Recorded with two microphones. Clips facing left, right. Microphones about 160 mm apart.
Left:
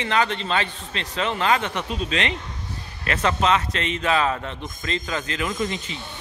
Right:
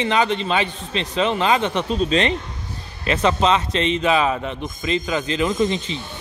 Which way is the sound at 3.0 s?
20° right (ahead or behind).